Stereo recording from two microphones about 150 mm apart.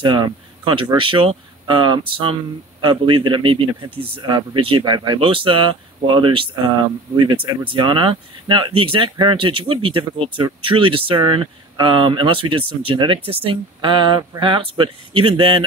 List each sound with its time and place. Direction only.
0.0 s speech: 30° right (ahead or behind)